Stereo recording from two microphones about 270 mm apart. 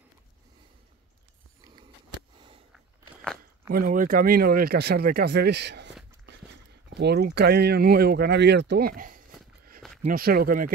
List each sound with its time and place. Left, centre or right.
3.7 s speech: right